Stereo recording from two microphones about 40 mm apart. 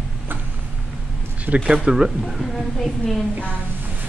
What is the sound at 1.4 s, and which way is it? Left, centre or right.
Speech, right.